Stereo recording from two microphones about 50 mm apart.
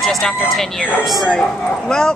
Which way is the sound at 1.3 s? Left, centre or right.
Centre.